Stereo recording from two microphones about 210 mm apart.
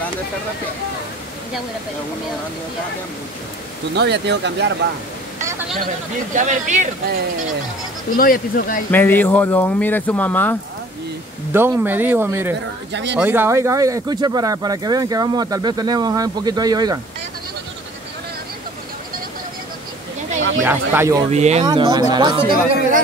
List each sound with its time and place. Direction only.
3.9 s speech: 55° right (ahead or behind)
6.3 s speech: 35° right (ahead or behind)
8.2 s speech: 45° left (ahead or behind)
8.9 s speech: 10° left (ahead or behind)
11.5 s speech: 10° right (ahead or behind)
12.9 s speech: 55° right (ahead or behind)
13.2 s speech: 10° right (ahead or behind)
20.6 s speech: 10° right (ahead or behind)
21.3 s speech: 30° right (ahead or behind)
21.6 s speech: 20° right (ahead or behind)